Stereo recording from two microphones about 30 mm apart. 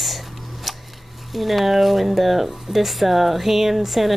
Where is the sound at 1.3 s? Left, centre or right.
Centre.